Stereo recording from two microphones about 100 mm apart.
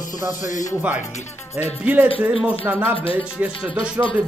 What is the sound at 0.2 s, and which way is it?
Speech, 35° left (ahead or behind).